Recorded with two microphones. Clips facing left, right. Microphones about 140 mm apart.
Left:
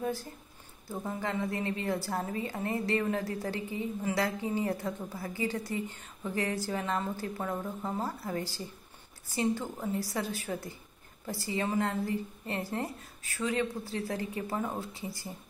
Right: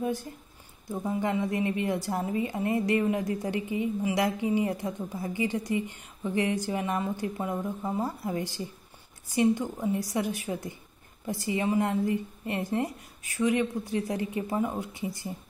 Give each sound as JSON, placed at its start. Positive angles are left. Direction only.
{"t": 0.0, "sound": "a woman's voice", "side_deg": -20}